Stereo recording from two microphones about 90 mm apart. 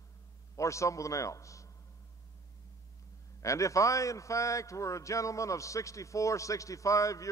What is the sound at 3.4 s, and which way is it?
A man's voice, 35° left (ahead or behind).